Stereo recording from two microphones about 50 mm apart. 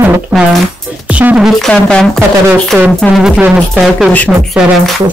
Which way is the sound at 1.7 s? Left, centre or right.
Centre.